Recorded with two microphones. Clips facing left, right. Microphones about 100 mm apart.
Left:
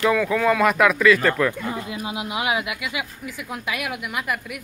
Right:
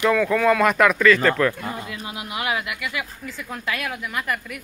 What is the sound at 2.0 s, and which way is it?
A woman's voice, 20° left (ahead or behind).